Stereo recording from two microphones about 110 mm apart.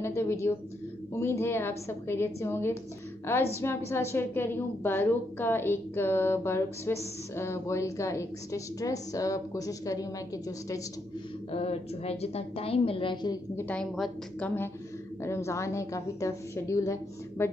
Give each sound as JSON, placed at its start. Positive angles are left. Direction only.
{"t": 0.0, "sound": "a woman's voice", "side_deg": 25}
{"t": 11.5, "sound": "a woman's voice", "side_deg": 70}
{"t": 13.6, "sound": "a woman's voice", "side_deg": 15}